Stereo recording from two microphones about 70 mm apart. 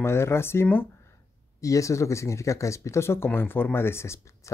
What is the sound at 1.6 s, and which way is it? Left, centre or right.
Speech, left.